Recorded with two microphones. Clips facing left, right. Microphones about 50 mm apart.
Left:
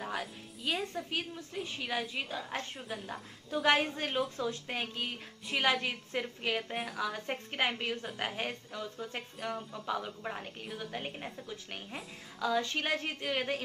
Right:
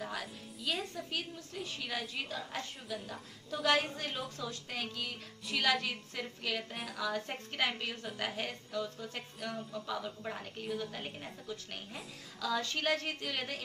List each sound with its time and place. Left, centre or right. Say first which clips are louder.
0.2 s speech: left 2 dB; centre
1.1 s a woman's voice: left 3 dB; left
3.6 s a woman's voice: left 2 dB; left